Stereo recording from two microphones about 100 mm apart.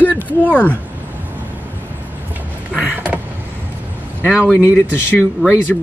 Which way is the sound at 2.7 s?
15° right (ahead or behind).